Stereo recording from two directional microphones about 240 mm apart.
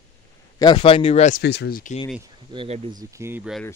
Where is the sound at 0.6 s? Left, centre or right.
Left.